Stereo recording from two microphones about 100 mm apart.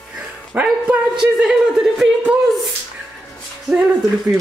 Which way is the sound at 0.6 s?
10° right (ahead or behind).